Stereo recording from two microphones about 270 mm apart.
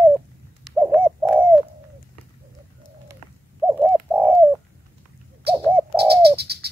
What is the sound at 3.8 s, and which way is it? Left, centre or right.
Bird, centre.